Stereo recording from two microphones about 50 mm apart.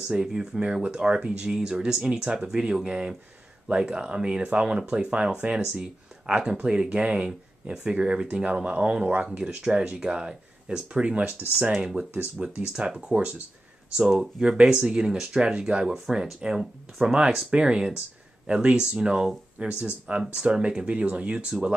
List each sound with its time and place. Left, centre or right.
0.1 s speech: centre
11.7 s speech: centre
13.1 s speech: right
14.0 s speech: centre
14.4 s speech: centre